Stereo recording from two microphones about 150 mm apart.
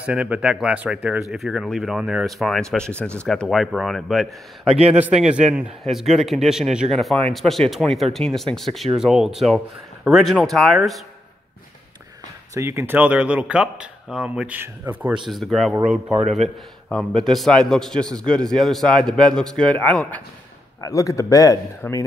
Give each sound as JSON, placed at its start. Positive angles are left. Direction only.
{"t": 0.0, "sound": "a man's voice", "side_deg": -10}
{"t": 12.5, "sound": "speech", "side_deg": -20}
{"t": 15.2, "sound": "a man's voice", "side_deg": 0}
{"t": 20.8, "sound": "speech", "side_deg": 20}